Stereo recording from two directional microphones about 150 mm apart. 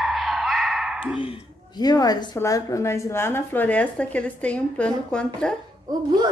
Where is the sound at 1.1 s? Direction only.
35° left (ahead or behind).